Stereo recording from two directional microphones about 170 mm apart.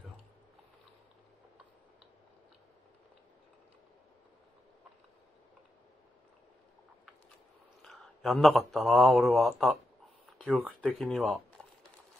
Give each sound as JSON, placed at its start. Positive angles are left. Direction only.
{"t": 7.8, "sound": "speech", "side_deg": 0}
{"t": 10.2, "sound": "a sound", "side_deg": 0}
{"t": 10.8, "sound": "speech", "side_deg": 5}